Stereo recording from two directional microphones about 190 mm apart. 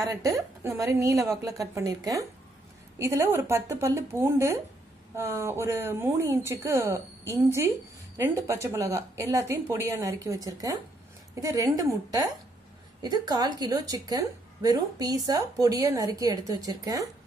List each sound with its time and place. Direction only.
0.0 s a woman's voice: 15° right (ahead or behind)